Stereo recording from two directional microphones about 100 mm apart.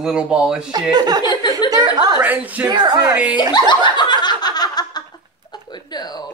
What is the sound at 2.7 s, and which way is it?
Speech, 45° right (ahead or behind).